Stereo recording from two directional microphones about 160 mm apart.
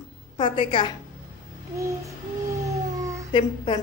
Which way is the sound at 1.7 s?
20° right (ahead or behind).